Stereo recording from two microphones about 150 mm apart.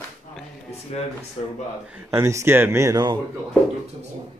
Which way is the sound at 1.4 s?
45° left (ahead or behind).